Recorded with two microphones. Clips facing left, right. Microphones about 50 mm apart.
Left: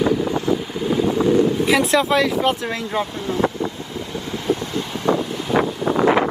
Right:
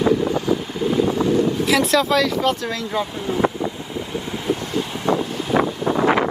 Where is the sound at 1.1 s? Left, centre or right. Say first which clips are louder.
Left 2 dB; centre.